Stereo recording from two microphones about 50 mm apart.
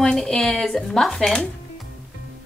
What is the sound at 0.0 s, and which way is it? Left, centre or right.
Speech, centre.